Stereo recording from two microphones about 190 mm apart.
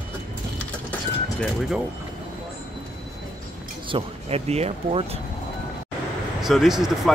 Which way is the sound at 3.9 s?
35° right (ahead or behind).